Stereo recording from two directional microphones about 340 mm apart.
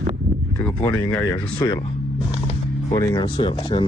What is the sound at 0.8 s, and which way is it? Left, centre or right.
Speech, centre.